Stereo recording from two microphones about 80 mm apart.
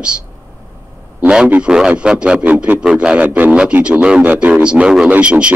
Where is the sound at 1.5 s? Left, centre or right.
Centre.